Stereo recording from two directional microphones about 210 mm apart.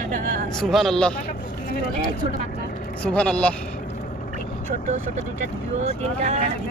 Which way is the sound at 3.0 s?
5° left (ahead or behind).